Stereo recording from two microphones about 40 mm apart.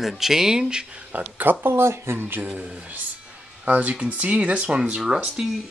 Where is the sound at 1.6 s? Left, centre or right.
Right.